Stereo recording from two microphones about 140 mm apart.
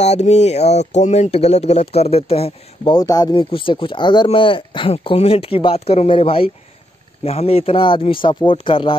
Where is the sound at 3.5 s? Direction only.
40° left (ahead or behind).